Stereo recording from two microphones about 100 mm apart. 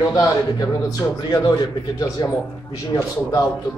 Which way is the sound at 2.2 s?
50° left (ahead or behind).